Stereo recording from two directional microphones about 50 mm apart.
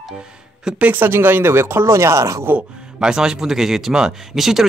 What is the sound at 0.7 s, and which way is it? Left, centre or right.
Speech, right.